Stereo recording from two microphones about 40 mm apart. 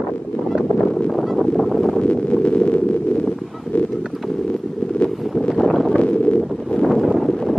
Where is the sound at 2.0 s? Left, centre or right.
Left.